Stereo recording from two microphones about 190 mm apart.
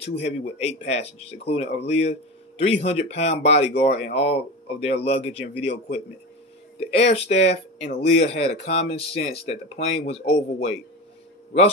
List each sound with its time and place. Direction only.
0.0 s speech: 35° left (ahead or behind)